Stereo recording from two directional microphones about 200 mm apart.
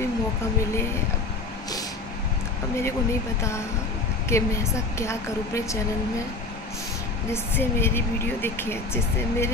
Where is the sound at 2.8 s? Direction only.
15° left (ahead or behind).